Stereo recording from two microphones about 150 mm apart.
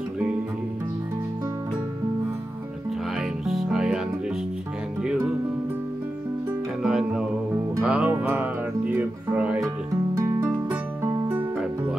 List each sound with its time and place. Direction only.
3.4 s music: 5° right (ahead or behind)
6.8 s music: 5° right (ahead or behind)
10.1 s music: 20° right (ahead or behind)
11.2 s music: 10° right (ahead or behind)